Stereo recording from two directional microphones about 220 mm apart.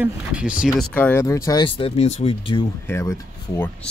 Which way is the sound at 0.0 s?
5° right (ahead or behind).